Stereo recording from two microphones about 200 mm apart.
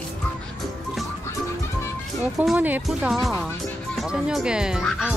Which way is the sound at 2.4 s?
5° right (ahead or behind).